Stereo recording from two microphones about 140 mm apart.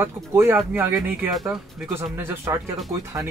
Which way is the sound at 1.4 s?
5° right (ahead or behind).